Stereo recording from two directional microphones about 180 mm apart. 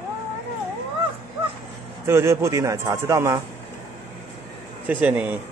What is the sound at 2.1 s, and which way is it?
Speech, 15° right (ahead or behind).